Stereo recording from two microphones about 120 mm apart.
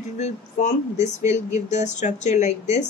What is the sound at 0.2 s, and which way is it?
Speech, 80° left.